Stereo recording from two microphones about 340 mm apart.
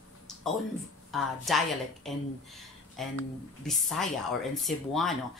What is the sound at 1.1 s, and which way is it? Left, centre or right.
A woman's voice, centre.